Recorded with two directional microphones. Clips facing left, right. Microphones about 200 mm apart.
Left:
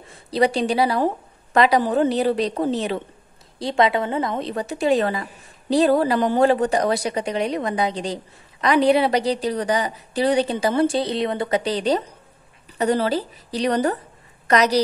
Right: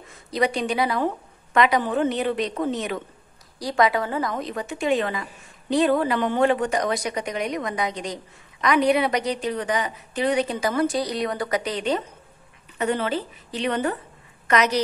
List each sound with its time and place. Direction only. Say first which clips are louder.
0.1 s a woman's voice: left 4 dB; 30° left (ahead or behind)